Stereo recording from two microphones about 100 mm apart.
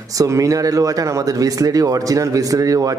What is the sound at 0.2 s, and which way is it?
Speech, 35° right (ahead or behind).